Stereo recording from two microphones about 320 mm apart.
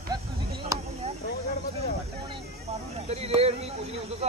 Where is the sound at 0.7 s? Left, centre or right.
Centre.